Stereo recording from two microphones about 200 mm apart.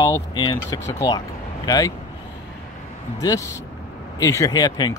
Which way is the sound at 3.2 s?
15° left (ahead or behind).